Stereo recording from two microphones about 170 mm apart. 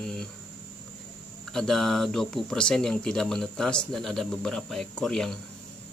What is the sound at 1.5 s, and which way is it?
Speech, centre (ahead or behind).